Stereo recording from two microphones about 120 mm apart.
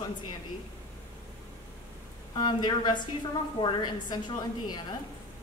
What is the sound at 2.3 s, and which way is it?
A woman's voice, 35° left (ahead or behind).